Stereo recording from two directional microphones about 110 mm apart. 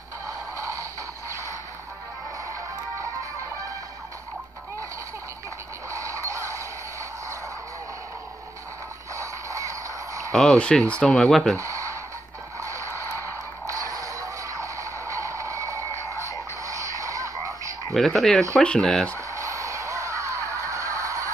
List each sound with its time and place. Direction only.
0.3 s music: 30° right (ahead or behind)
5.9 s creak: 30° right (ahead or behind)
9.1 s music: 30° right (ahead or behind)
10.3 s speech: 5° left (ahead or behind)
11.5 s a sound: 30° right (ahead or behind)
16.6 s radio: 30° right (ahead or behind)
17.9 s speech: centre (ahead or behind)
19.1 s a sound: 30° right (ahead or behind)